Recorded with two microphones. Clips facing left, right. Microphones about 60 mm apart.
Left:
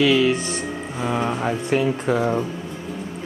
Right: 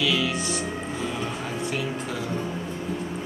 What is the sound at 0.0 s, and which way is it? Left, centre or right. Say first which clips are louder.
Music: left 8 dB; left.